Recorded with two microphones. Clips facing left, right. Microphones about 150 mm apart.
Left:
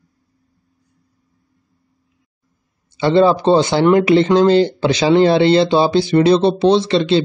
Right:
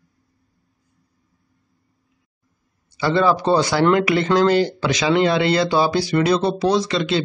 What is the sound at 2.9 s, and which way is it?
Speech, 25° left (ahead or behind).